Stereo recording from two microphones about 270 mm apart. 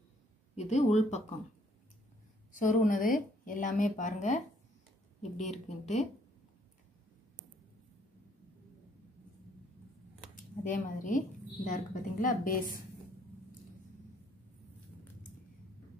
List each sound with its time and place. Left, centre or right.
0.6 s speech: left
2.5 s speech: left
5.4 s speech: left
10.3 s speech: left